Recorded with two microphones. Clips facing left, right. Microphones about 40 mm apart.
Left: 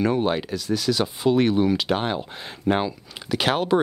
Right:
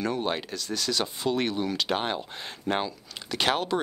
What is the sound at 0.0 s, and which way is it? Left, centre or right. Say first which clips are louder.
Speech: left 7 dB; centre.